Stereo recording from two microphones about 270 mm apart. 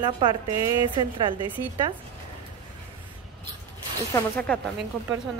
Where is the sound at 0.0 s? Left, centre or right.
Centre.